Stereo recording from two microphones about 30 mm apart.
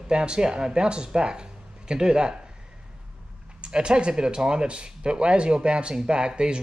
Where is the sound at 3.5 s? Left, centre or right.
Right.